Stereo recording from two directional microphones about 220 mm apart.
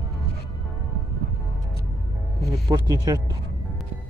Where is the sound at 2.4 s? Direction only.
15° right (ahead or behind).